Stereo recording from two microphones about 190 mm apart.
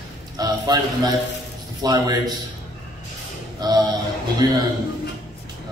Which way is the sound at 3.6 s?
20° right (ahead or behind).